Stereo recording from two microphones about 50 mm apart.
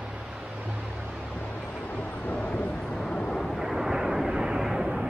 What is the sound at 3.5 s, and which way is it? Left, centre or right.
Vehicle, centre.